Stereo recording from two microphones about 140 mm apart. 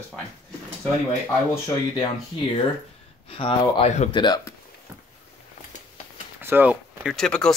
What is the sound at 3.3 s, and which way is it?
Speech, 40° left (ahead or behind).